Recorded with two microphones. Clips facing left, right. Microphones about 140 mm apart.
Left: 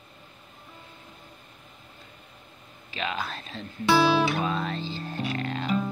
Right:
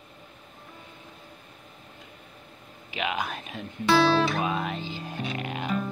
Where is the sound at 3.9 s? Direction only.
5° left (ahead or behind).